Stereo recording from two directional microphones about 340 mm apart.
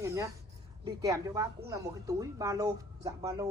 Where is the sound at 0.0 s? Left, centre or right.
Centre.